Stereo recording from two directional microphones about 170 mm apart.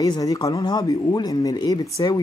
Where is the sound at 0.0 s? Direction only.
20° left (ahead or behind).